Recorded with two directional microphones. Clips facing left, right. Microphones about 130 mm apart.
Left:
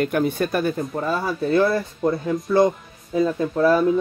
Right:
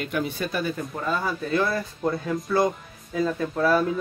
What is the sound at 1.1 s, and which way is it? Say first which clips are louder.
Speech: left 6 dB; 30° left (ahead or behind).